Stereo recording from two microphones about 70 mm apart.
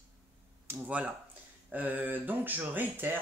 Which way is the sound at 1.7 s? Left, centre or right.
Right.